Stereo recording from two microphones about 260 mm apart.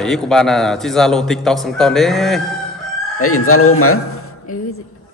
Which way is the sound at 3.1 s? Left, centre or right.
Left.